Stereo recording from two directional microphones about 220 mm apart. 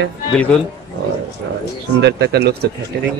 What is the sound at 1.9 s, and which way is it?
Speech, 50° right (ahead or behind).